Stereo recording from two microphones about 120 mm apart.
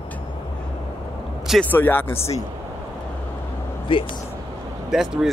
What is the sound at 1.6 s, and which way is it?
Speech, 15° left (ahead or behind).